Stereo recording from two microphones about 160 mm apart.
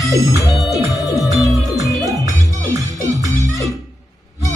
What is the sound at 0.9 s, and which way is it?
Music, 20° left (ahead or behind).